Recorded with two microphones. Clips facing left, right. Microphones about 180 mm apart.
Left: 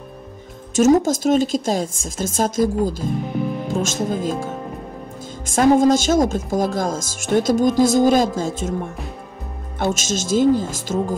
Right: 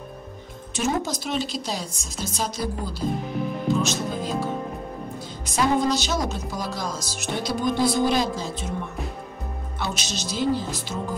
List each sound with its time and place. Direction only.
0.7 s a woman's voice: 45° left (ahead or behind)